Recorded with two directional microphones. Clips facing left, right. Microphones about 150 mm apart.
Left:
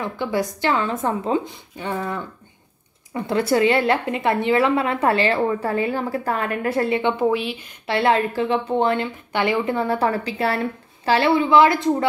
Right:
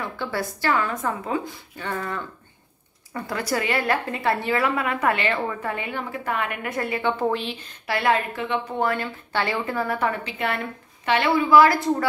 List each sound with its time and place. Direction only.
0.0 s a woman's voice: 15° left (ahead or behind)
1.8 s a woman's voice: 15° left (ahead or behind)
7.2 s speech: 10° left (ahead or behind)
7.8 s a woman's voice: 25° left (ahead or behind)